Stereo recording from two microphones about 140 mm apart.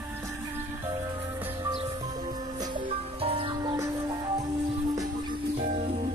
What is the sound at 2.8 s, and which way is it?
Music, 40° right (ahead or behind).